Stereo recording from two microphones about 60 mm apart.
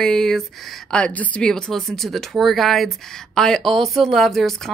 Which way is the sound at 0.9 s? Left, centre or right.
Left.